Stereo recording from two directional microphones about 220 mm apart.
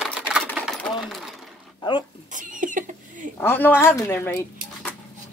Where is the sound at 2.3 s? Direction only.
35° right (ahead or behind).